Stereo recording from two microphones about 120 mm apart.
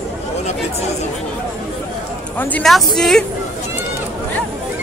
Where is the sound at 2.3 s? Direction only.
15° left (ahead or behind).